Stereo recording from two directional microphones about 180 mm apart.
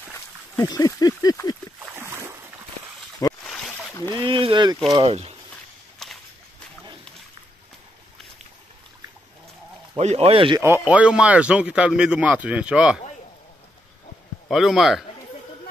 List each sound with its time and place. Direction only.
0.6 s a sound: 20° left (ahead or behind)
2.0 s boat: 15° right (ahead or behind)
3.4 s boat: 5° left (ahead or behind)
4.1 s speech: 25° right (ahead or behind)
6.0 s walk: 5° left (ahead or behind)
9.9 s speech: 35° right (ahead or behind)
10.6 s speech: 10° right (ahead or behind)
14.5 s speech: centre (ahead or behind)